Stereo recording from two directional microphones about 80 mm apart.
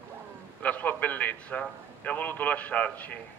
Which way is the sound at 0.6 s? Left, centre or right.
Centre.